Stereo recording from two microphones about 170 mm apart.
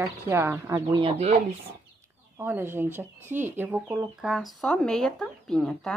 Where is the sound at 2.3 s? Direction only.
15° right (ahead or behind).